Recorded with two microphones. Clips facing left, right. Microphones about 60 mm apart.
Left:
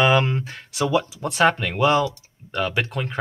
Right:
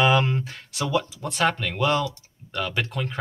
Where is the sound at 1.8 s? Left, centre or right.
Centre.